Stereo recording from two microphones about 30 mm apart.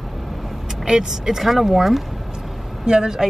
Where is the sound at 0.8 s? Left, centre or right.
Centre.